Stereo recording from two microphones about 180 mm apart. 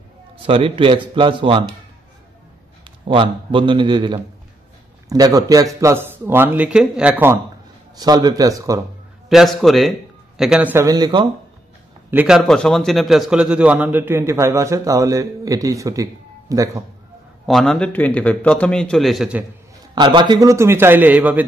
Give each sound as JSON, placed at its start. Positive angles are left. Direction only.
{"t": 0.5, "sound": "speech", "side_deg": -30}
{"t": 2.8, "sound": "a man's voice", "side_deg": -30}
{"t": 7.9, "sound": "speech", "side_deg": -20}
{"t": 9.3, "sound": "a man's voice", "side_deg": 0}
{"t": 10.9, "sound": "speech", "side_deg": -25}
{"t": 12.1, "sound": "a man's voice", "side_deg": -5}
{"t": 17.5, "sound": "a man's voice", "side_deg": 5}
{"t": 20.0, "sound": "a man's voice", "side_deg": -25}